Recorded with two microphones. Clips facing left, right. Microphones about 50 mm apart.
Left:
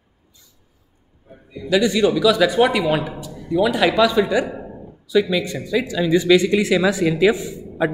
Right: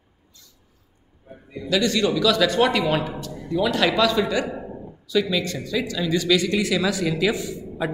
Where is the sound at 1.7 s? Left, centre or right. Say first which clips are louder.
Left 4 dB; centre.